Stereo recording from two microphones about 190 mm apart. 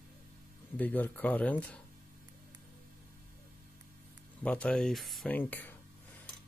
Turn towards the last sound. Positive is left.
turn(degrees=10)  # may be behind; listen again after turning